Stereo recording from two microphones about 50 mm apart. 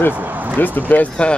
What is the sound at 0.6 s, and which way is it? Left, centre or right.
Speech, left.